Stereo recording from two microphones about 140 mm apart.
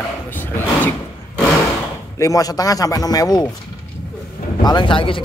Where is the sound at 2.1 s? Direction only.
25° left (ahead or behind).